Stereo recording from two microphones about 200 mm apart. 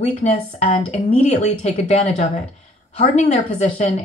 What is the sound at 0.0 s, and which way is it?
A woman's voice, 35° left (ahead or behind).